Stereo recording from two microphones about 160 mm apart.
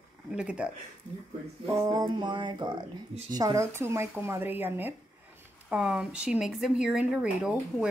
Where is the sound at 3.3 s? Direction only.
20° right (ahead or behind).